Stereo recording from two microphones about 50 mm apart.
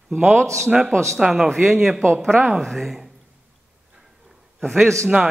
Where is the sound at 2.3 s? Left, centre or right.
Right.